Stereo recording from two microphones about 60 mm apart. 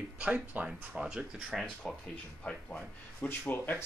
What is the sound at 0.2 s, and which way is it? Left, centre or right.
Speech, right.